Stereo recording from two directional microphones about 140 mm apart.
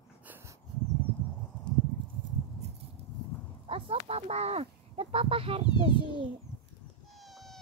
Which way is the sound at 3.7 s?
40° right (ahead or behind).